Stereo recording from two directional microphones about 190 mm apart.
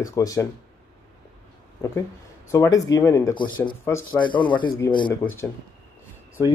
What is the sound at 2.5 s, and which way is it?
Speech, 15° left (ahead or behind).